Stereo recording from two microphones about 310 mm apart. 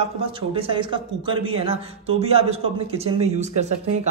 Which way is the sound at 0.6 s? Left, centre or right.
Centre.